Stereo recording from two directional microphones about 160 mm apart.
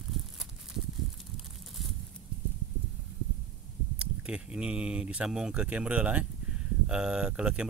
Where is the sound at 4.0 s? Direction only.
5° right (ahead or behind).